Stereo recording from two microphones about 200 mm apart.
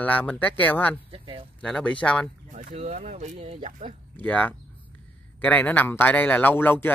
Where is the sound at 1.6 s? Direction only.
5° left (ahead or behind).